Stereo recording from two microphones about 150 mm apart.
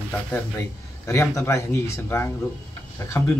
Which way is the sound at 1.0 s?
20° left (ahead or behind).